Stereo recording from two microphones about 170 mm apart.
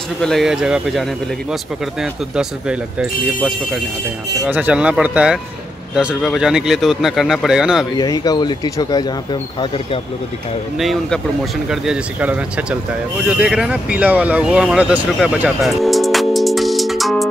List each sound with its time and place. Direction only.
0.2 s speech: centre (ahead or behind)
8.0 s speech: 20° left (ahead or behind)
10.8 s speech: centre (ahead or behind)